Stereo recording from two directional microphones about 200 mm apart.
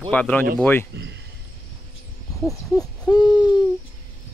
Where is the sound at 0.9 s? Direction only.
60° right (ahead or behind).